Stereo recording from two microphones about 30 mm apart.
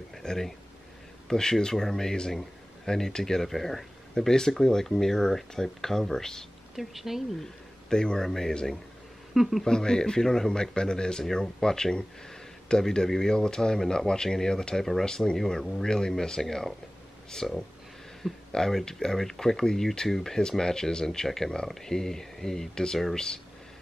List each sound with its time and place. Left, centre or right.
0.2 s speech: left
3.4 s speech: centre
6.8 s speech: centre
7.9 s speech: left
8.3 s speech: centre
9.3 s speech: centre
9.7 s speech: left
10.2 s speech: centre
10.5 s speech: left
15.3 s speech: centre
19.1 s speech: centre